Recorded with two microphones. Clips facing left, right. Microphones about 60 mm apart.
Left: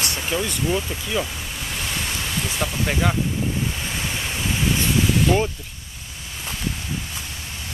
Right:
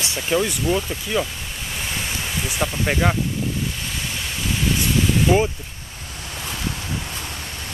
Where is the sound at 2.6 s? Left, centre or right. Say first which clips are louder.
Right 3 dB; centre.